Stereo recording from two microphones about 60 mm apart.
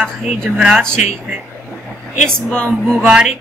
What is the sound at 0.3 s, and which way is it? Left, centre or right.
Speech, centre.